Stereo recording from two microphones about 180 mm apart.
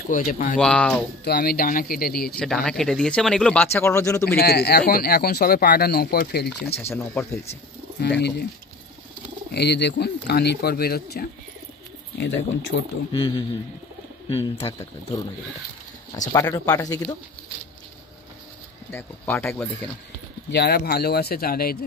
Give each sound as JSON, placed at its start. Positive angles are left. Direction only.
{"t": 0.1, "sound": "speech", "side_deg": 50}
{"t": 0.6, "sound": "speech", "side_deg": 5}
{"t": 1.2, "sound": "speech", "side_deg": 60}
{"t": 2.3, "sound": "speech", "side_deg": 5}
{"t": 4.4, "sound": "speech", "side_deg": 60}
{"t": 6.8, "sound": "speech", "side_deg": 10}
{"t": 9.5, "sound": "speech", "side_deg": 65}
{"t": 12.2, "sound": "speech", "side_deg": 90}
{"t": 13.1, "sound": "speech", "side_deg": 30}
{"t": 16.3, "sound": "speech", "side_deg": 20}
{"t": 18.9, "sound": "speech", "side_deg": 10}
{"t": 20.5, "sound": "speech", "side_deg": 65}